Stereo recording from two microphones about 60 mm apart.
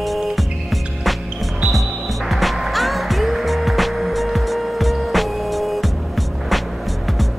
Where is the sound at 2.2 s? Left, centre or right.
Centre.